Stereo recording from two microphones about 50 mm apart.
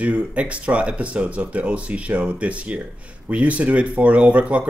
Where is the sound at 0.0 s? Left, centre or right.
Right.